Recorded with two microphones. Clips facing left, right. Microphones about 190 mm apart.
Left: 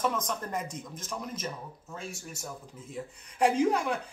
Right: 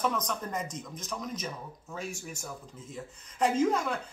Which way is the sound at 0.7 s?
55° left (ahead or behind).